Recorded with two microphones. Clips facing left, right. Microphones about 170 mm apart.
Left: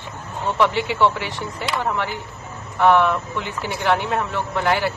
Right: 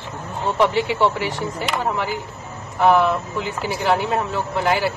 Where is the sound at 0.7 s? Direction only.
40° right (ahead or behind).